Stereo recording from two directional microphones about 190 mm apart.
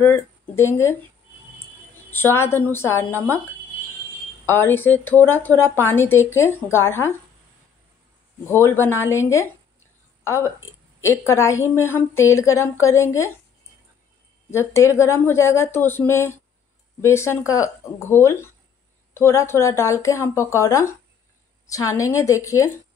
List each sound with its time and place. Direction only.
0.0 s speech: 15° left (ahead or behind)
2.0 s a woman's voice: 10° left (ahead or behind)
4.5 s a woman's voice: 10° left (ahead or behind)
8.5 s a woman's voice: 15° left (ahead or behind)
14.5 s a woman's voice: 15° left (ahead or behind)